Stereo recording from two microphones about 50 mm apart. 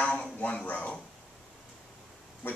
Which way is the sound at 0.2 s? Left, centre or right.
Left.